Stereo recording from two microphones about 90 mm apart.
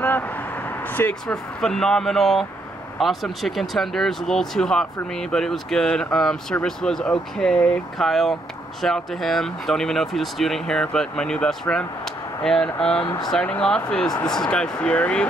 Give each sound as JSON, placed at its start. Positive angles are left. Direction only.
{"t": 0.0, "sound": "vehicle", "side_deg": 20}
{"t": 1.2, "sound": "speech", "side_deg": 5}
{"t": 13.0, "sound": "speech", "side_deg": 50}
{"t": 13.5, "sound": "speech", "side_deg": 10}